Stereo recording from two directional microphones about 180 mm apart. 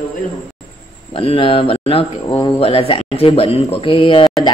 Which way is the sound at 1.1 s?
30° left (ahead or behind).